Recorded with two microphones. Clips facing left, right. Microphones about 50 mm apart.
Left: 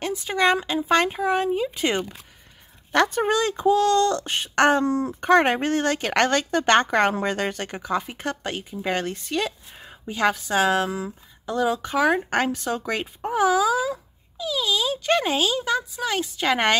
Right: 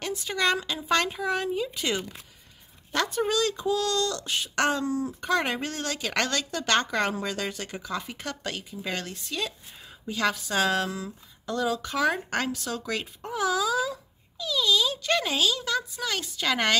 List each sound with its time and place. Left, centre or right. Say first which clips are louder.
0.0 s a woman's voice: left 5 dB; left
2.9 s a woman's voice: left 6 dB; left
10.0 s a woman's voice: left 5 dB; left